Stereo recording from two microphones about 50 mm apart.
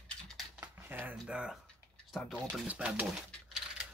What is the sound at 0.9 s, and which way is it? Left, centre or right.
Speech, right.